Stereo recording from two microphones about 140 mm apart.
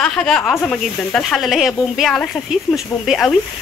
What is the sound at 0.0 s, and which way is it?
Speech, 5° left (ahead or behind).